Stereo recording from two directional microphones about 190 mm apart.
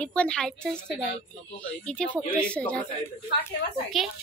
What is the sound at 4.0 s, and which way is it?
Speech, centre (ahead or behind).